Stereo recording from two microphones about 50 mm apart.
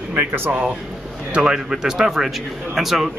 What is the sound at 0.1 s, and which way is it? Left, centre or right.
Speech, right.